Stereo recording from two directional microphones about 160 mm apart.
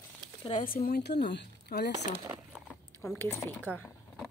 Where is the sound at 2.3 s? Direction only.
5° right (ahead or behind).